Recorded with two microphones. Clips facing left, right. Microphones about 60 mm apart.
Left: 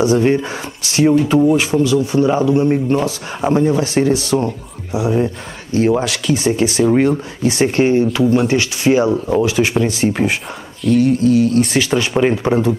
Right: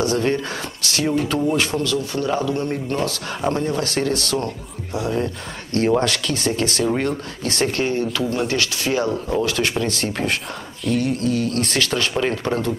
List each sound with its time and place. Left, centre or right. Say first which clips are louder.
0.0 s a man's voice: left 6 dB; centre
5.8 s a man's voice: left 3 dB; centre
10.8 s a man's voice: left 8 dB; centre